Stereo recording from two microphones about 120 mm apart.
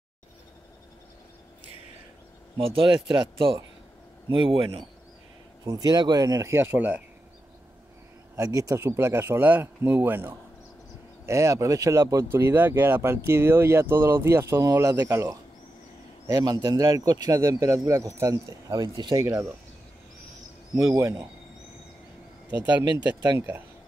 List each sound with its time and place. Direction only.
2.5 s speech: 45° right (ahead or behind)
5.7 s speech: 35° right (ahead or behind); by 7.0 s 15° right (ahead or behind)
8.4 s speech: 30° right (ahead or behind)
18.8 s speech: 40° right (ahead or behind)
20.9 s speech: 25° right (ahead or behind)